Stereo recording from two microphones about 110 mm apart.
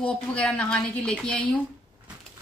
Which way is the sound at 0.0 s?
10° left (ahead or behind).